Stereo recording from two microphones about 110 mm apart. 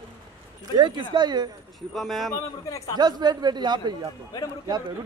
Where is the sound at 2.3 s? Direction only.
30° left (ahead or behind).